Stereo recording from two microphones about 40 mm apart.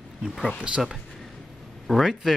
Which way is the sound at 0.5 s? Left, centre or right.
Right.